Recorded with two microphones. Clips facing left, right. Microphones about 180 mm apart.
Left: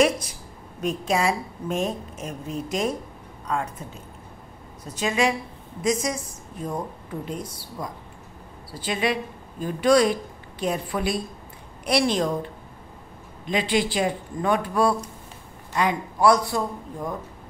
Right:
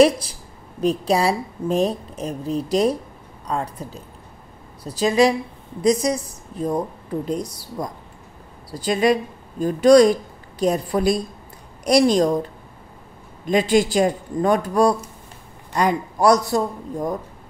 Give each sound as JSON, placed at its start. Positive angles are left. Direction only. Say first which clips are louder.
{"t": 0.0, "sound": "a woman's voice", "louder": "right 6 dB", "side_deg": -30}
{"t": 13.5, "sound": "a man's voice", "louder": "right 6 dB", "side_deg": -45}